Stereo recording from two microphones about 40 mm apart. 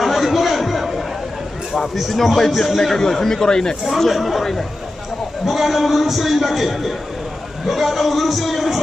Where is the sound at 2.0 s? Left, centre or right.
Centre.